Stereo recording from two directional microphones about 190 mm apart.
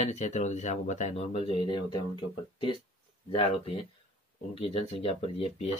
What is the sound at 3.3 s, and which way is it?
Speech, 30° left (ahead or behind).